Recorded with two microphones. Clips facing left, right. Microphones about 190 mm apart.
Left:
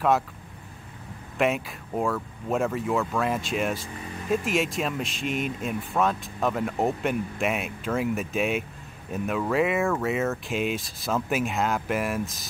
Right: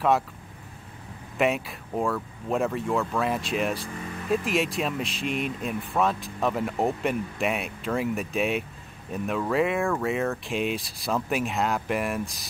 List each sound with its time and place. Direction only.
1.4 s speech: centre (ahead or behind)